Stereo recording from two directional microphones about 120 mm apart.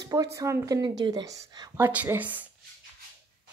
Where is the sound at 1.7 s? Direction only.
15° right (ahead or behind).